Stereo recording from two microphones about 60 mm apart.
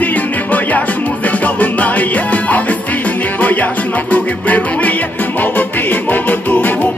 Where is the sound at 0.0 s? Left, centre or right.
Left.